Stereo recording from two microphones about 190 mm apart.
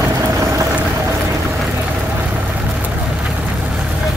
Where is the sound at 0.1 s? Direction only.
15° right (ahead or behind).